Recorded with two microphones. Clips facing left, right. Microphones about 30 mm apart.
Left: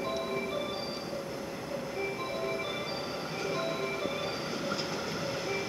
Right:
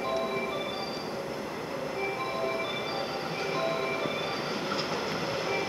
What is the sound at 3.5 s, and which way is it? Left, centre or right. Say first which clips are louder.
Train: right 4 dB; centre.